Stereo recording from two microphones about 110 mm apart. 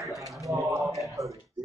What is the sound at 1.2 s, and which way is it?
Speech, 30° right (ahead or behind).